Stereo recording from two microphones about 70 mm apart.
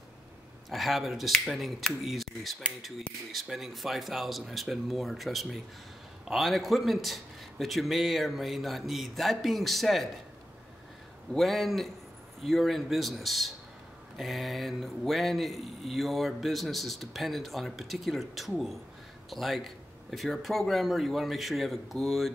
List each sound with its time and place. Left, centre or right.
0.7 s speech: centre
11.3 s speech: centre